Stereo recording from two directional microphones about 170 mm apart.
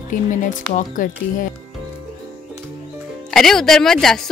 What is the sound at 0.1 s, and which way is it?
Speech, 50° left (ahead or behind).